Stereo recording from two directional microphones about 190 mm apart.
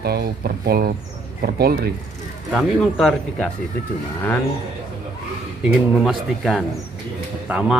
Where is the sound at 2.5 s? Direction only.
Centre (ahead or behind).